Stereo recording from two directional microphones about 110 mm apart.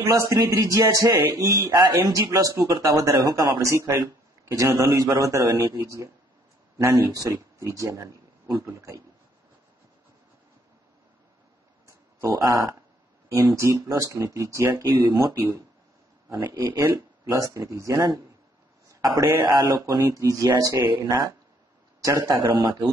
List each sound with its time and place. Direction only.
0.0 s speech: 30° right (ahead or behind)
12.2 s speech: 30° right (ahead or behind)